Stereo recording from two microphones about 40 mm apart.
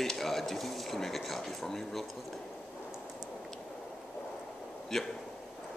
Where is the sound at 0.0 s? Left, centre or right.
Centre.